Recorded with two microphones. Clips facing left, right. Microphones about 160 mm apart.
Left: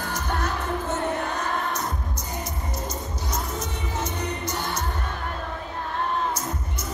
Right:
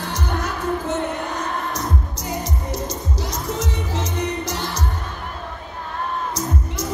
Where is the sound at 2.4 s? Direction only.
85° right.